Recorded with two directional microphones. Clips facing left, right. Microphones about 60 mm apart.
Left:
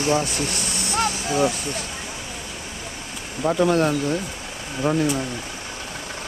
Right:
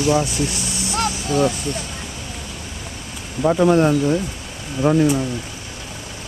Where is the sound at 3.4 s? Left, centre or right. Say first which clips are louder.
Right 4 dB; centre.